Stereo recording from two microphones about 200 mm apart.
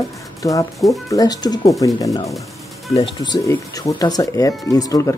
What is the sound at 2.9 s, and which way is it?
Speech, 30° left (ahead or behind).